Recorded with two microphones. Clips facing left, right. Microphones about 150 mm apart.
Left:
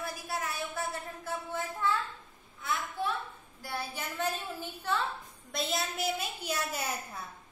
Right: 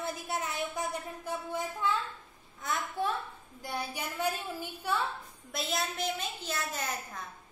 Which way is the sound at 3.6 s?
15° right (ahead or behind).